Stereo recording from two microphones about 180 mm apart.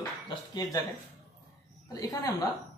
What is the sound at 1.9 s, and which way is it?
Speech, 20° left (ahead or behind).